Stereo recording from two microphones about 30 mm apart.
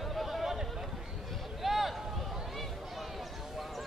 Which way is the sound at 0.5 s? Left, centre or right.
Centre.